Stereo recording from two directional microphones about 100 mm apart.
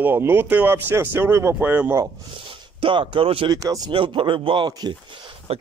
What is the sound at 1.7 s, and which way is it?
Speech, 15° right (ahead or behind).